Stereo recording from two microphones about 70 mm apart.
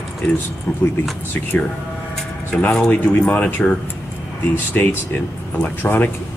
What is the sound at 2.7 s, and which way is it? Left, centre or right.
Speech, centre.